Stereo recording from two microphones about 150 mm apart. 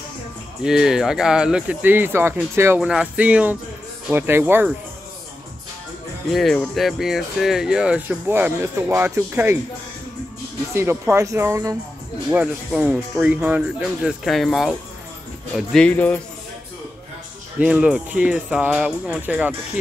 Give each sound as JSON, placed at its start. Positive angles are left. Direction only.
{"t": 0.7, "sound": "speech", "side_deg": -5}
{"t": 6.3, "sound": "speech", "side_deg": 0}
{"t": 10.7, "sound": "speech", "side_deg": -15}
{"t": 17.6, "sound": "speech", "side_deg": -10}